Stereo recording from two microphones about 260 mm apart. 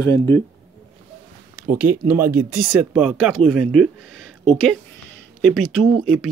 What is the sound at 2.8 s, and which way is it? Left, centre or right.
Speech, centre.